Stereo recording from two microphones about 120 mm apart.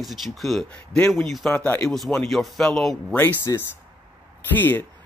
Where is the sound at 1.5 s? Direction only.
15° left (ahead or behind).